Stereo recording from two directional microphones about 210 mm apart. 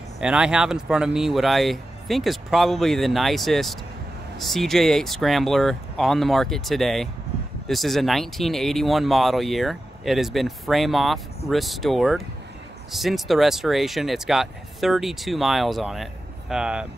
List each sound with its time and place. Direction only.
0.2 s speech: 5° right (ahead or behind)